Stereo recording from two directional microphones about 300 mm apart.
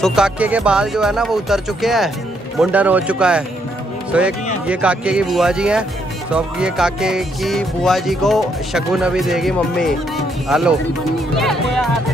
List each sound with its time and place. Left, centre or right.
0.0 s speech: centre